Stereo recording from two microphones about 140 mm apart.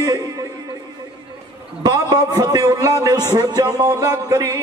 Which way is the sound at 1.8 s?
30° right (ahead or behind).